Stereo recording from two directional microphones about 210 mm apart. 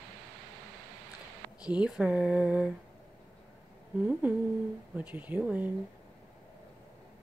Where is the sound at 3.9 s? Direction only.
5° right (ahead or behind).